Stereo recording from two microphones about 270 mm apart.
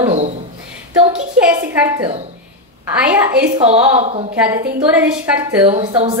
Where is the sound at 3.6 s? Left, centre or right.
Right.